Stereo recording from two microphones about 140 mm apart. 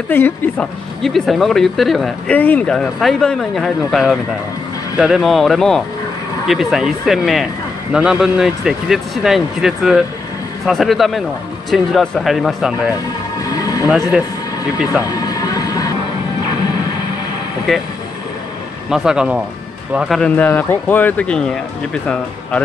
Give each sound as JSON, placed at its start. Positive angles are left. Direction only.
{"t": 0.1, "sound": "speech", "side_deg": 15}
{"t": 1.0, "sound": "speech", "side_deg": 0}
{"t": 2.3, "sound": "a man's voice", "side_deg": 10}
{"t": 13.5, "sound": "a sound", "side_deg": 25}
{"t": 14.9, "sound": "music", "side_deg": 25}
{"t": 17.7, "sound": "speech", "side_deg": 0}
{"t": 18.9, "sound": "speech", "side_deg": -5}
{"t": 20.2, "sound": "speech", "side_deg": 10}